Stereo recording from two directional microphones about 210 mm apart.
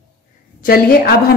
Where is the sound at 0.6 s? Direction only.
45° left (ahead or behind).